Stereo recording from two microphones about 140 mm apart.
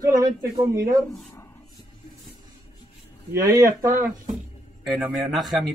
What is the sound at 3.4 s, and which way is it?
Speech, 25° right (ahead or behind).